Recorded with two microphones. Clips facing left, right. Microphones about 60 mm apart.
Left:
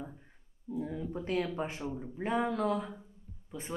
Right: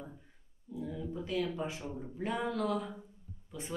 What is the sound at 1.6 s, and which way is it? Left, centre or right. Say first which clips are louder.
Speech: left 2 dB; left.